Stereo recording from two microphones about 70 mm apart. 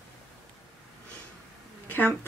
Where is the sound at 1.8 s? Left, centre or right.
Left.